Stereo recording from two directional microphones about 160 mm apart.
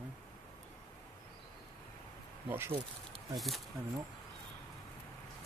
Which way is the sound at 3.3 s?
Centre (ahead or behind).